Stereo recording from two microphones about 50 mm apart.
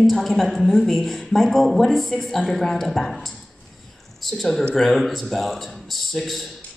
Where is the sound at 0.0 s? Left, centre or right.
Centre.